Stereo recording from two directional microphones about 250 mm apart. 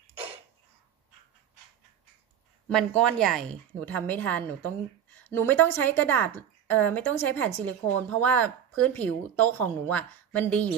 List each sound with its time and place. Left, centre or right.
2.7 s a woman's voice: centre